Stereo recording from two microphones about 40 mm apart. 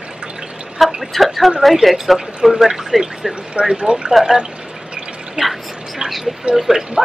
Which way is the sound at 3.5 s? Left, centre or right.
Right.